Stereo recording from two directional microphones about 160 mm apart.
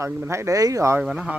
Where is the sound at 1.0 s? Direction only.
5° right (ahead or behind).